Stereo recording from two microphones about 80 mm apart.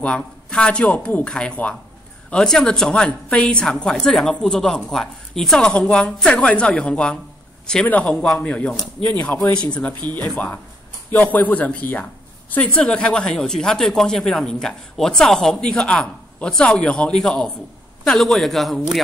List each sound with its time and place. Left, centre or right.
0.0 s speech: centre
9.9 s speech: right
10.3 s a man's voice: left; by 18.9 s centre